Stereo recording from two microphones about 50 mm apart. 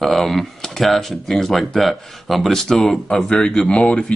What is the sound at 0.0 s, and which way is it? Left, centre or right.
A man's voice, centre.